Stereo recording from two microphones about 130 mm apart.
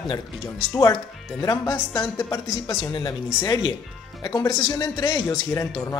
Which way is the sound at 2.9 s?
35° left (ahead or behind).